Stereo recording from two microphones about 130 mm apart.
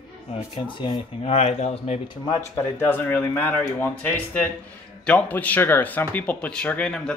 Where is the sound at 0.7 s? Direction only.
40° left (ahead or behind).